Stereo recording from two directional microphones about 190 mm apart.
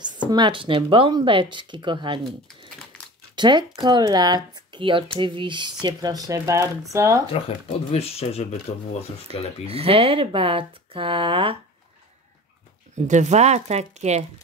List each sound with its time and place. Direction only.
0.0 s speech: 25° right (ahead or behind)
7.4 s speech: 30° left (ahead or behind)
9.7 s speech: 30° right (ahead or behind)
12.9 s speech: 40° right (ahead or behind)